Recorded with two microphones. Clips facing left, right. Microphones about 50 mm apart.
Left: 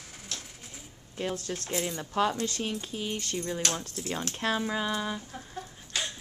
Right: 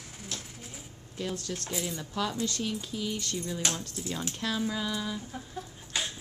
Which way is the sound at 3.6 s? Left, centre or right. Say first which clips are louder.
Even; centre.